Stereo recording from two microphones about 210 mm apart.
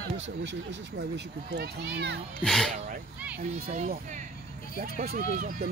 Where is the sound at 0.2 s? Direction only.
60° right (ahead or behind).